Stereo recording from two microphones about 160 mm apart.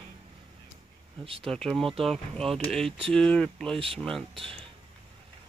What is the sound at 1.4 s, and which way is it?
Speech, 5° left (ahead or behind).